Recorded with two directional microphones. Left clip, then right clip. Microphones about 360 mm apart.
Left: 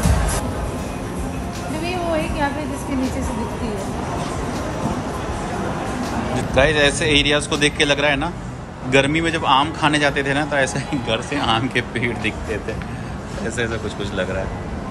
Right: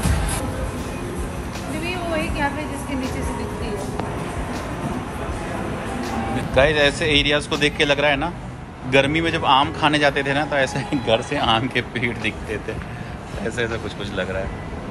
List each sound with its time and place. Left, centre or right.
1.9 s music: left
6.5 s a man's voice: centre
13.6 s a man's voice: centre